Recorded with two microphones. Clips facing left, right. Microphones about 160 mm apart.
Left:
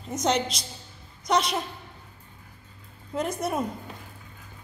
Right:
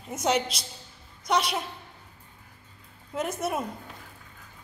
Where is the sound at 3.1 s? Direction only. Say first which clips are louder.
Left 1 dB; 5° right (ahead or behind).